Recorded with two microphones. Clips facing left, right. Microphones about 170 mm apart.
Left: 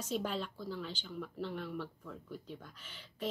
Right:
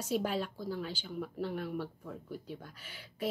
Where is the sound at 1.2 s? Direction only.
45° right (ahead or behind).